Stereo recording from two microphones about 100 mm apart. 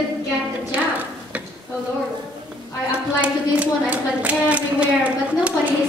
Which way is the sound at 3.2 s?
15° right (ahead or behind).